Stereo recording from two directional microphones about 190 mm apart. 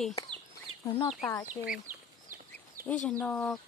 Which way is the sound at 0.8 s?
25° left (ahead or behind).